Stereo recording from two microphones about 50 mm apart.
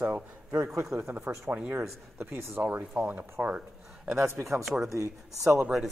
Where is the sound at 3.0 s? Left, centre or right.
Right.